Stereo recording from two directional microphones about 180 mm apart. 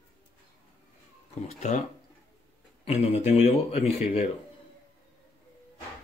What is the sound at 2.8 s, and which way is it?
Speech, 35° left (ahead or behind).